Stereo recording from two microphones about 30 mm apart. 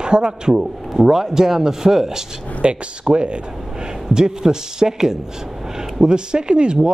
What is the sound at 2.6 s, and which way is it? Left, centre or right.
Speech, right.